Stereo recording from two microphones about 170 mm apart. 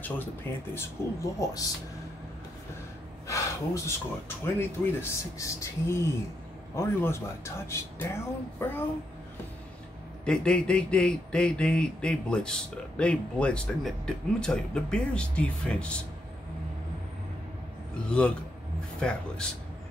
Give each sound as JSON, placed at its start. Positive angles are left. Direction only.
{"t": 0.7, "sound": "speech", "side_deg": 20}
{"t": 3.3, "sound": "speech", "side_deg": 15}
{"t": 10.2, "sound": "speech", "side_deg": 5}
{"t": 18.0, "sound": "speech", "side_deg": 5}